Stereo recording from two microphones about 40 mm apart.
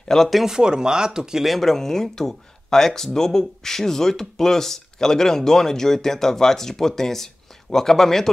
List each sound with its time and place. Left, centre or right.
0.1 s speech: centre
0.5 s speech: centre
1.4 s speech: centre